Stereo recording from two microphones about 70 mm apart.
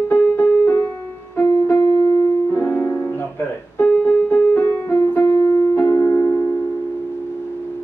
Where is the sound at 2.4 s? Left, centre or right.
Left.